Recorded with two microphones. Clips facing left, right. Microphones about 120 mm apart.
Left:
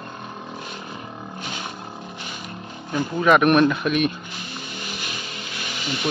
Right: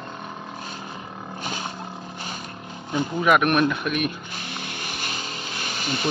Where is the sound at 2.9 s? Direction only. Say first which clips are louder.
Left 2 dB; 5° right (ahead or behind).